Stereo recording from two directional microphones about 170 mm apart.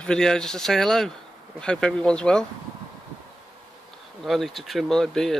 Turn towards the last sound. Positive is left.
turn(degrees=5)  # may be behind; listen again after turning